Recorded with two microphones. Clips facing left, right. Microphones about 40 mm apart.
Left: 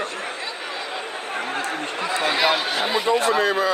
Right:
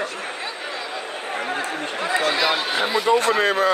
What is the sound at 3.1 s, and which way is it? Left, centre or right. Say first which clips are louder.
Speech: right 1 dB; right.